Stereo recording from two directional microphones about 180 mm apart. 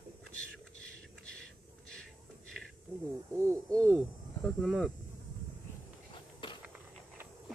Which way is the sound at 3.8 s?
5° left (ahead or behind).